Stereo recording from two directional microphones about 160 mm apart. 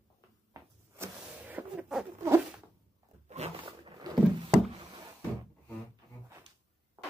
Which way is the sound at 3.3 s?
40° right (ahead or behind).